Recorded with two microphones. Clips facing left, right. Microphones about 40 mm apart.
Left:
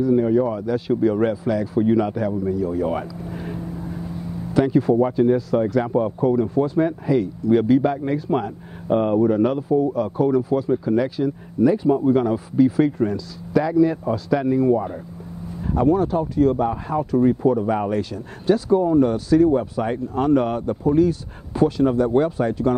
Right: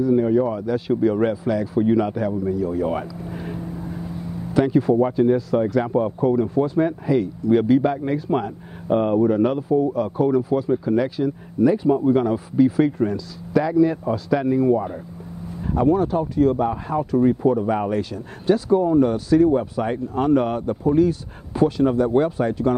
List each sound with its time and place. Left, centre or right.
0.0 s speech: centre
4.6 s speech: centre